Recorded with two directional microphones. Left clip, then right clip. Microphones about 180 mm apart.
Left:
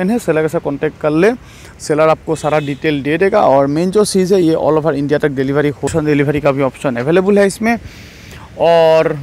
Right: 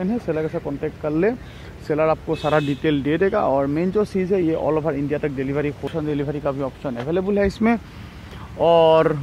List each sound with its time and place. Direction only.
0.0 s speech: 35° left (ahead or behind)
2.5 s speech: 10° left (ahead or behind)
3.3 s speech: 30° left (ahead or behind)
7.4 s speech: 15° left (ahead or behind)